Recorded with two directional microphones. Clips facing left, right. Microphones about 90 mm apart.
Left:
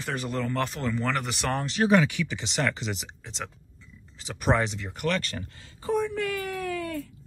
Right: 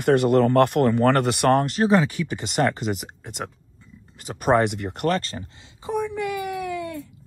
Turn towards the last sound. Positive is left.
turn(degrees=-20)  # may be behind; listen again after turning